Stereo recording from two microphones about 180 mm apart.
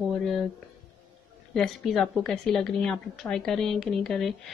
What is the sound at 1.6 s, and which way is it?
A woman's voice, centre (ahead or behind).